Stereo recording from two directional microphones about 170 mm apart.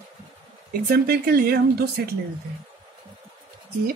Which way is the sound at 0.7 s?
65° right (ahead or behind).